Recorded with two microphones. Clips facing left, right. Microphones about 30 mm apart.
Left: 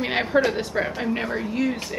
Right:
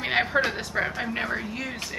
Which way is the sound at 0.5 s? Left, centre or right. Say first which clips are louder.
Left 3 dB; centre.